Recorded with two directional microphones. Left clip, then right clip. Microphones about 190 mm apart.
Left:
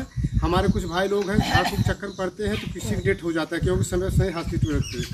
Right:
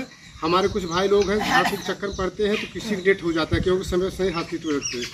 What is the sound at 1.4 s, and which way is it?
Speech, 50° left (ahead or behind).